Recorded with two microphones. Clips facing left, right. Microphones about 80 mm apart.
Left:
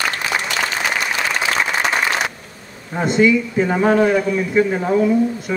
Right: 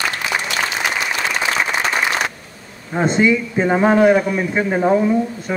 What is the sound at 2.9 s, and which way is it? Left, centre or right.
A woman's voice, right.